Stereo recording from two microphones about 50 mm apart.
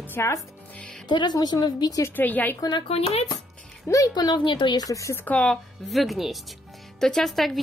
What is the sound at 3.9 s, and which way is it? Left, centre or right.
Speech, left.